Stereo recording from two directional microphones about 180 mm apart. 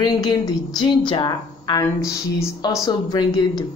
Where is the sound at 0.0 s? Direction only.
25° left (ahead or behind).